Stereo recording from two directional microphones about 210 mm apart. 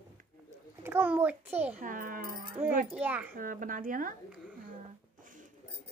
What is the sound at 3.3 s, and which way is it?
Speech, 40° right (ahead or behind).